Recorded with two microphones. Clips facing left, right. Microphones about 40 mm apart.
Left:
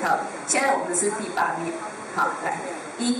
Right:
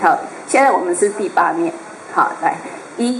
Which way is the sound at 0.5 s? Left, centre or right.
Centre.